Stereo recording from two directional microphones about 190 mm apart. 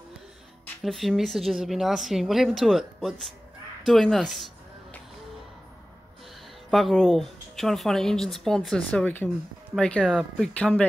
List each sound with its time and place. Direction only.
0.8 s speech: centre (ahead or behind)
6.7 s speech: centre (ahead or behind)